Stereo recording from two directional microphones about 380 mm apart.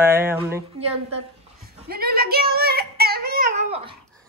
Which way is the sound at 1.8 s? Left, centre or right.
Right.